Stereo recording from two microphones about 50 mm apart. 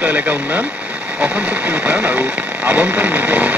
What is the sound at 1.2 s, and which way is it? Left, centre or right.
Radio, right.